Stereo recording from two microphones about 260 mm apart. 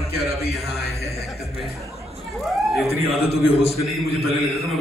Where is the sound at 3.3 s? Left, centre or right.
Left.